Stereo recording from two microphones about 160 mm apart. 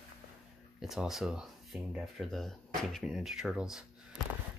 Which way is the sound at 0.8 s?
Centre (ahead or behind).